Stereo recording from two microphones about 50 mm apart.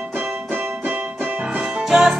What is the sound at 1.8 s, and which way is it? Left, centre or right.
Music, centre.